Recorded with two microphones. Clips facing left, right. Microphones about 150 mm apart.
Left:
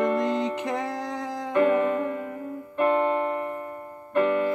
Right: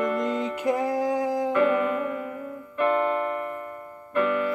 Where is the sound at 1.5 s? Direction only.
35° left (ahead or behind).